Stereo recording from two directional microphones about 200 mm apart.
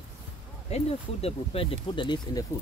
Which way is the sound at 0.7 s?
30° left (ahead or behind).